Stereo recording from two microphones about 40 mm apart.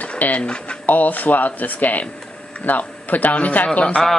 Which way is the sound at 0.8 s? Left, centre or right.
Left.